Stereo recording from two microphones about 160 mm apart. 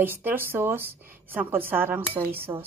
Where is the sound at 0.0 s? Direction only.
10° right (ahead or behind).